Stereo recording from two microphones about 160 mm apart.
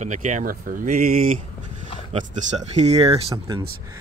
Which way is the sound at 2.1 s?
45° right (ahead or behind).